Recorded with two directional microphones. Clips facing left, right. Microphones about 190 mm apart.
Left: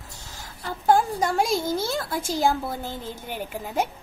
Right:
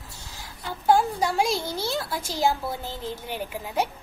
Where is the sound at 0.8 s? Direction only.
50° left (ahead or behind).